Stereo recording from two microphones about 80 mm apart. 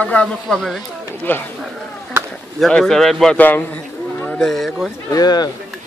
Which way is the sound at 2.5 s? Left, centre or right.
Centre.